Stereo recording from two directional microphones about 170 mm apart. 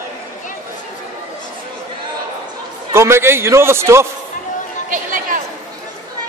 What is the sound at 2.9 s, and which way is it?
A man's voice, 15° right (ahead or behind).